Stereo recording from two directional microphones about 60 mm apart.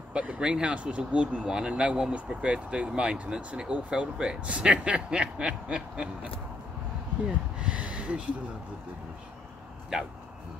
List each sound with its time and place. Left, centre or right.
0.1 s speech: centre
7.6 s a sound: centre
9.9 s speech: centre